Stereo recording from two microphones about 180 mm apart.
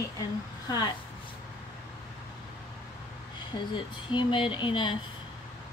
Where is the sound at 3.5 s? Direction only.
25° left (ahead or behind).